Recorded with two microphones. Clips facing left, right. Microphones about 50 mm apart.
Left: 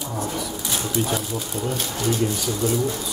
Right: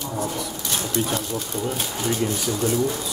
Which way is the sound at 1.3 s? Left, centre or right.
Centre.